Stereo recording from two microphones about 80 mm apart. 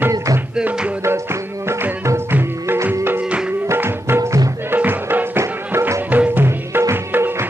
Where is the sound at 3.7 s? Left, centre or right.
Right.